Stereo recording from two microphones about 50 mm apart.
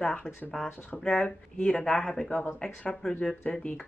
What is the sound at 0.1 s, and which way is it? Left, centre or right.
Speech, left.